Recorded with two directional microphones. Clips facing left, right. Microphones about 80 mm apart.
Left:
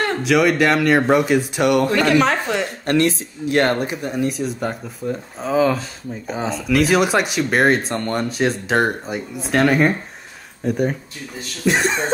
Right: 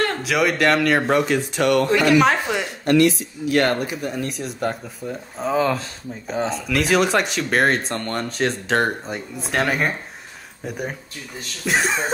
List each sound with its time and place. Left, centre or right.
0.2 s speech: centre
2.0 s speech: centre
2.8 s speech: left
4.2 s speech: centre